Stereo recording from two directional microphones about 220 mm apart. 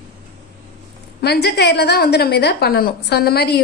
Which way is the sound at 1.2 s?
50° left (ahead or behind).